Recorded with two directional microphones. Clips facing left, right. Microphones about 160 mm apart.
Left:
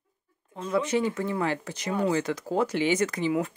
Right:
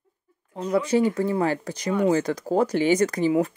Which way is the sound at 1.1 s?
35° right (ahead or behind).